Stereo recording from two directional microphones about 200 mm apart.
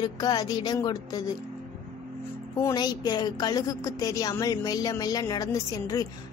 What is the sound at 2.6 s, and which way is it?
A woman's voice, 20° left (ahead or behind).